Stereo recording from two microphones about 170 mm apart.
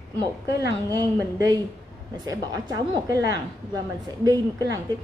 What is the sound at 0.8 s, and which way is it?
A woman's voice, 20° right (ahead or behind).